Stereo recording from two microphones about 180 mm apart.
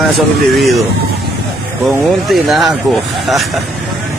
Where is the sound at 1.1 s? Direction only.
65° right (ahead or behind).